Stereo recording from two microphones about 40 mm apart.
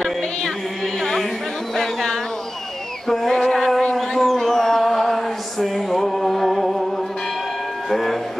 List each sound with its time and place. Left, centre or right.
0.2 s music: centre
1.8 s a sound: centre
3.9 s chant: centre
7.9 s train: centre